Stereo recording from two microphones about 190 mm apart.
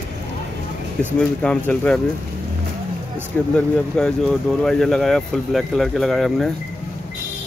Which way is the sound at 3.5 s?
5° left (ahead or behind).